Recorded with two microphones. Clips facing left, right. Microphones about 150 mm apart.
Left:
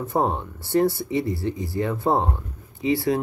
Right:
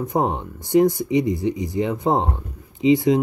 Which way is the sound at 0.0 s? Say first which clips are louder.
Right 1 dB; 15° right (ahead or behind).